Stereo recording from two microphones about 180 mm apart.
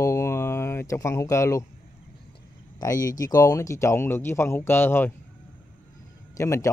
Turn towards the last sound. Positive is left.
turn(degrees=15)  # may be behind; listen again after turning